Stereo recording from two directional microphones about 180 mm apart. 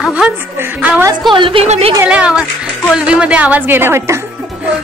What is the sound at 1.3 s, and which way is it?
Speech, 30° right (ahead or behind).